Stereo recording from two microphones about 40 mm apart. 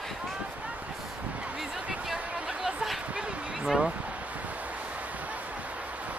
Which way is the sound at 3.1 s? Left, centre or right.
Right.